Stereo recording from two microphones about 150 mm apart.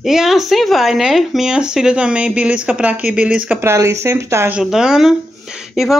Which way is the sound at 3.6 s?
20° right (ahead or behind).